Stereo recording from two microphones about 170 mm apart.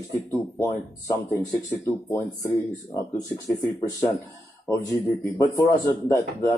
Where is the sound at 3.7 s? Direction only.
15° left (ahead or behind).